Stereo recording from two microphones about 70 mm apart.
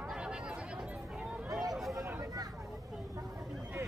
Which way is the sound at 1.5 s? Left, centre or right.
Right.